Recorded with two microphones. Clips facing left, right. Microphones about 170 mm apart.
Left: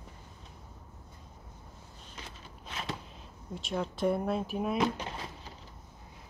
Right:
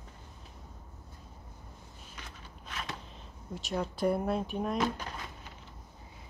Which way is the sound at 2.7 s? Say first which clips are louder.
Left 2 dB; 30° left (ahead or behind).